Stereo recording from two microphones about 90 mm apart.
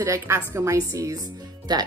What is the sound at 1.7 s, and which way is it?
Speech, 50° right (ahead or behind).